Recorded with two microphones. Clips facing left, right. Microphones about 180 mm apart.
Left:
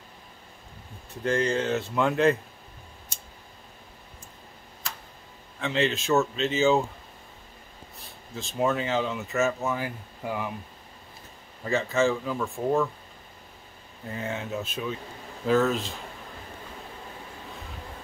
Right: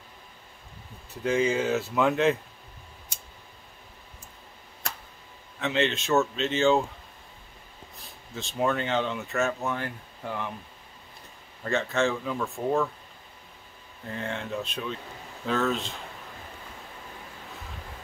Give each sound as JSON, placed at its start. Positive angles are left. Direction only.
{"t": 1.2, "sound": "speech", "side_deg": -5}
{"t": 5.6, "sound": "speech", "side_deg": 0}
{"t": 8.4, "sound": "speech", "side_deg": 0}
{"t": 11.6, "sound": "speech", "side_deg": 0}
{"t": 14.0, "sound": "speech", "side_deg": 5}